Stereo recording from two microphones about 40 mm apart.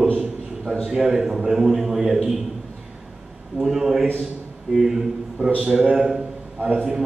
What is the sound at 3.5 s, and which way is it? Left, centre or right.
A man's voice, centre.